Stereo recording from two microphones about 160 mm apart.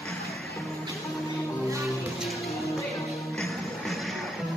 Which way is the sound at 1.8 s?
Centre (ahead or behind).